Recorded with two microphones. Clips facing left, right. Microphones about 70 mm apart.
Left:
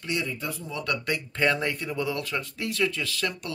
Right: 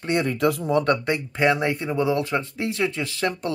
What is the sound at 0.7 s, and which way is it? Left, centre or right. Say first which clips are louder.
Speech: right 9 dB; right.